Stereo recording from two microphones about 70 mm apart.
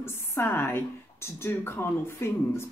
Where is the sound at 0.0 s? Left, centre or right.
Left.